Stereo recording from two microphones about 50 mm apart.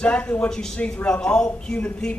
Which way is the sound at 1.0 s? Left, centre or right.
Centre.